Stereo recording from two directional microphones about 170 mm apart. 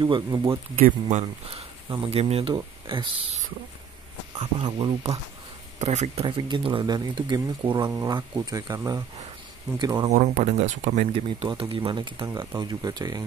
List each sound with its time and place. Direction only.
0.0 s speech: 25° right (ahead or behind)
6.2 s speech: 30° right (ahead or behind)
10.0 s speech: 45° right (ahead or behind); by 13.2 s 25° right (ahead or behind)